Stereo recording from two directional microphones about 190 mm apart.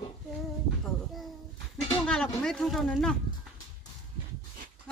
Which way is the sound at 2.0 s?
5° left (ahead or behind).